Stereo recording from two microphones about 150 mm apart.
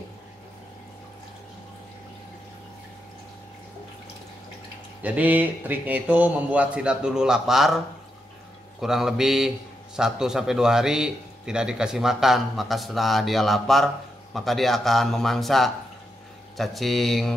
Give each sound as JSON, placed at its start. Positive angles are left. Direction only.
{"t": 5.0, "sound": "a man's voice", "side_deg": -10}